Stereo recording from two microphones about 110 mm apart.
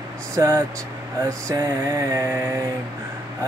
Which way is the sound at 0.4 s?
35° right (ahead or behind).